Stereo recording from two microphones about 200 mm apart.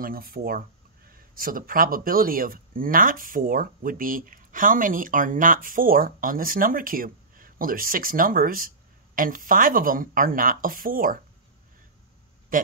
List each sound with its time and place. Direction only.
0.0 s speech: 45° right (ahead or behind)
12.5 s speech: 45° right (ahead or behind)